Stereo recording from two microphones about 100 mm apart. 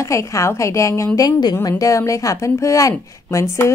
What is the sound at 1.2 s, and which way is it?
A woman's voice, 45° left (ahead or behind).